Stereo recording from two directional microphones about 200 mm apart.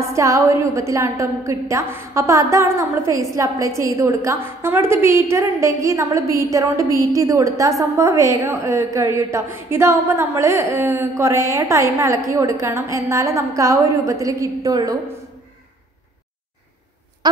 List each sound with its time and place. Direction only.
0.1 s a woman's voice: 15° right (ahead or behind)